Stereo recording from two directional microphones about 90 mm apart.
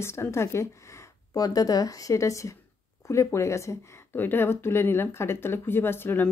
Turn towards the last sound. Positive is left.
turn(degrees=20)  # may be behind; listen again after turning